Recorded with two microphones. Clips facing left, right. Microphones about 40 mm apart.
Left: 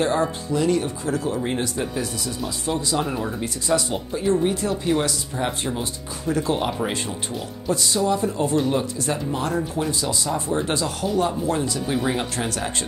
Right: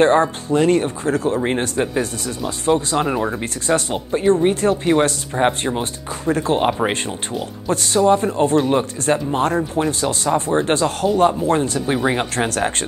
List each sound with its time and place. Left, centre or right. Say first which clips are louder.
0.0 s speech: right 7 dB; right
11.8 s speech: right 4 dB; right
12.4 s speech: right 6 dB; right